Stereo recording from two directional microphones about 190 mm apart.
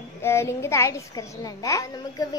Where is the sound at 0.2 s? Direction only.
15° left (ahead or behind).